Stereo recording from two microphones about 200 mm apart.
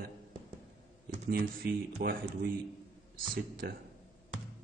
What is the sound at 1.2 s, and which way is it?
Speech, 50° right (ahead or behind).